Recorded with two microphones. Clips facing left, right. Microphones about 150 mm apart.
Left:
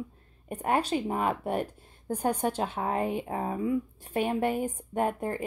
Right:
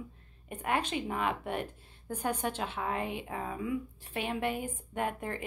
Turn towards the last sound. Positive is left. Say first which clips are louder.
# left 6 dB
turn(degrees=35)  # may be behind; listen again after turning